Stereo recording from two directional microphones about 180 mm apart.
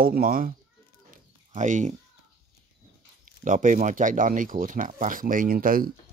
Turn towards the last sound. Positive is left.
turn(degrees=-50)  # may be behind; listen again after turning